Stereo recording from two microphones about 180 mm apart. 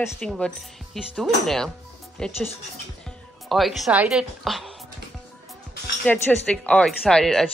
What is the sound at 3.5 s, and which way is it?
Speech, centre (ahead or behind).